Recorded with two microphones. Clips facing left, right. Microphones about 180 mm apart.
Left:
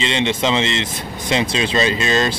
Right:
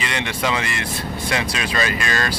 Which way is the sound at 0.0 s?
25° left (ahead or behind).